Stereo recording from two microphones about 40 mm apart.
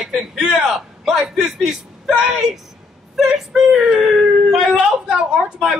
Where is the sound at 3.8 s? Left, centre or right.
Right.